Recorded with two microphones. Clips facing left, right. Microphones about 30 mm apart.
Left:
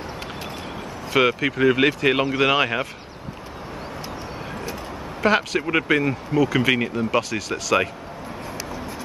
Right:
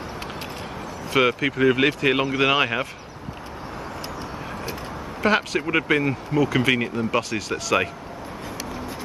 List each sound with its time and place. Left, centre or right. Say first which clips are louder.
1.1 s speech: left 1 dB; centre
5.2 s speech: left 1 dB; centre